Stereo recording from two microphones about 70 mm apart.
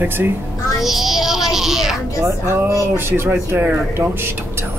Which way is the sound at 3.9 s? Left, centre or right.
Right.